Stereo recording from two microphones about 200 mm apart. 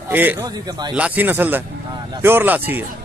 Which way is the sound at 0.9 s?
5° right (ahead or behind).